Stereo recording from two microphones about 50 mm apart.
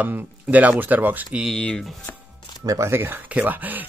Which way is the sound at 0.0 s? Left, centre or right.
Right.